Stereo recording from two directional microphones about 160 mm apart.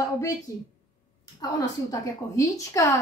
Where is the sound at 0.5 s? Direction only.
20° left (ahead or behind).